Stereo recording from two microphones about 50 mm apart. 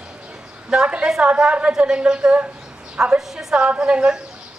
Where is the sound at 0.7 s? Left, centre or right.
Right.